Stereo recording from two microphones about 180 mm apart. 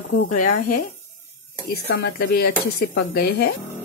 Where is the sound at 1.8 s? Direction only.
60° left (ahead or behind).